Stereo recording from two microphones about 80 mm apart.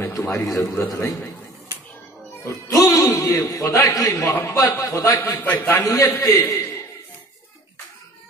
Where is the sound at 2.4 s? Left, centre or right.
Left.